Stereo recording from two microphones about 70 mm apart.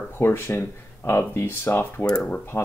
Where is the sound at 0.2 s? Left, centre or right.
Left.